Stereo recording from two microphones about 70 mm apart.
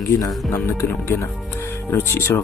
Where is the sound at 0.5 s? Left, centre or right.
Left.